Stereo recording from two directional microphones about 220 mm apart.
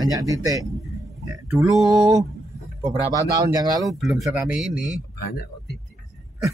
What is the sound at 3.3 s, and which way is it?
Speech, 15° right (ahead or behind).